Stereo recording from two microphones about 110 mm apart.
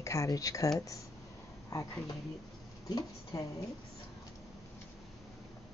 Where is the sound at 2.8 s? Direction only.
35° left (ahead or behind).